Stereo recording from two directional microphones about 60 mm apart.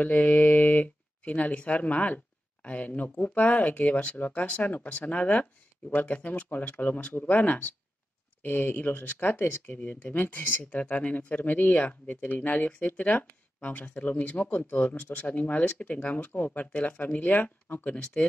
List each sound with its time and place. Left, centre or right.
0.0 s speech: left